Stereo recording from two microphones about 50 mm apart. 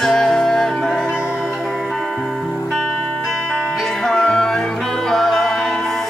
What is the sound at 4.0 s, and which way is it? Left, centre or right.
Music, centre.